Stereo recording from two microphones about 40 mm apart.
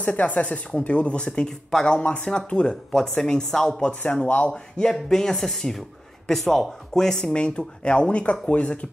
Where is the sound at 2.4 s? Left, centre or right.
Left.